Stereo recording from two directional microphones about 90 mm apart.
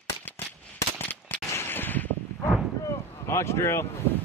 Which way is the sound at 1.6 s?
25° left (ahead or behind).